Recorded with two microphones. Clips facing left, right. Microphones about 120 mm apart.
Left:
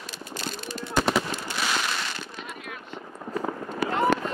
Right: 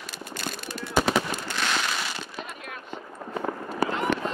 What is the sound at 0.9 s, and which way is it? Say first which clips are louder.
Fireworks: right 1 dB; centre (ahead or behind).